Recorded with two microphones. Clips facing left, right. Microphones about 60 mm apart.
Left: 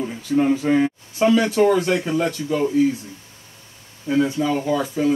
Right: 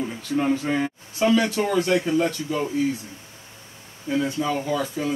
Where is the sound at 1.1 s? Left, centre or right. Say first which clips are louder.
Left 3 dB; left.